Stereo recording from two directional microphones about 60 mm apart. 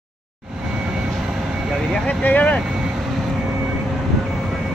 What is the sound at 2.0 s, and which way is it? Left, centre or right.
Speech, left.